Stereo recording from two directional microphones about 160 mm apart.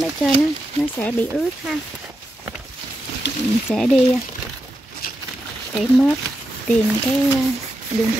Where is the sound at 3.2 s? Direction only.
90° left.